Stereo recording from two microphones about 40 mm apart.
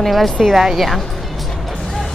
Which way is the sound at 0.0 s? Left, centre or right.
Centre.